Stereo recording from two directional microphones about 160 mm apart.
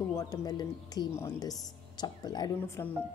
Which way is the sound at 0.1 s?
20° left (ahead or behind).